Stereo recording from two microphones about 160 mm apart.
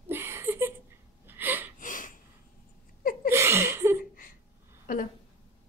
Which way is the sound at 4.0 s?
60° left (ahead or behind).